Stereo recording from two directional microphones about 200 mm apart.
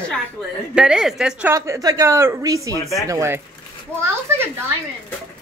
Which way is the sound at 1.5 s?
15° right (ahead or behind).